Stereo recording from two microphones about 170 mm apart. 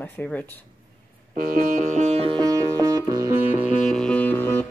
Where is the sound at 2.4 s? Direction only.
20° right (ahead or behind).